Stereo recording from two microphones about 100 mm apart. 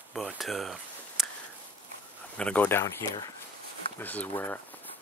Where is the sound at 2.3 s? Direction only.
15° left (ahead or behind).